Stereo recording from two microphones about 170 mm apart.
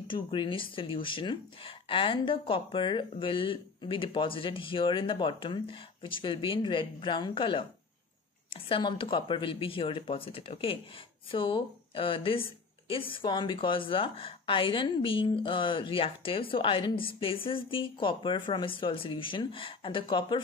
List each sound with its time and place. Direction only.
0.1 s speech: 30° left (ahead or behind)
8.6 s a woman's voice: 30° left (ahead or behind)